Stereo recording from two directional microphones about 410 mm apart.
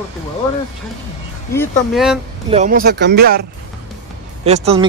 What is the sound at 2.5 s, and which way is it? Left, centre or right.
Speech, centre.